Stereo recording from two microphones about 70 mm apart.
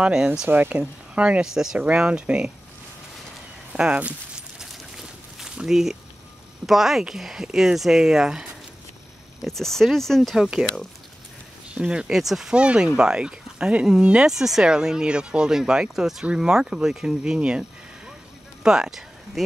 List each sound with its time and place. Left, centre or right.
0.0 s speech: centre
0.5 s speech: right
3.7 s a sound: centre
6.6 s speech: centre
9.5 s speech: centre
10.3 s speech: centre
11.7 s speech: centre